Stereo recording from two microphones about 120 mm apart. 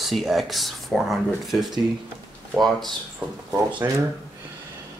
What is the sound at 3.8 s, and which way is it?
Speech, 20° right (ahead or behind).